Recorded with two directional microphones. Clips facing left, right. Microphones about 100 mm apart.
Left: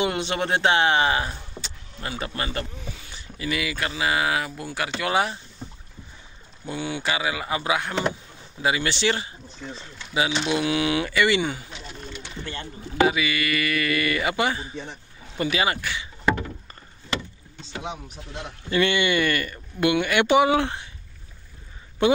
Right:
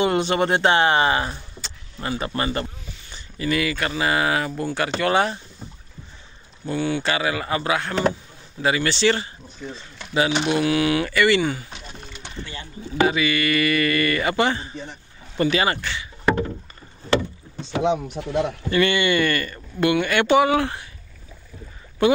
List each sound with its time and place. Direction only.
0.0 s speech: centre (ahead or behind)
6.6 s speech: 15° left (ahead or behind)
17.7 s speech: 70° right (ahead or behind)
18.7 s speech: 20° left (ahead or behind)
22.0 s speech: 20° left (ahead or behind)